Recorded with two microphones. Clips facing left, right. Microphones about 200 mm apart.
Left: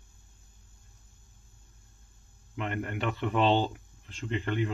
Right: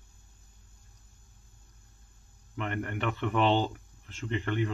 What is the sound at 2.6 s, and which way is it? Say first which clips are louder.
Speech: even; 15° left (ahead or behind).